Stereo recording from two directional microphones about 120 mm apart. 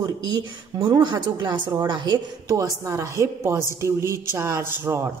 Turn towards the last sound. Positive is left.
turn(degrees=-20)  # may be behind; listen again after turning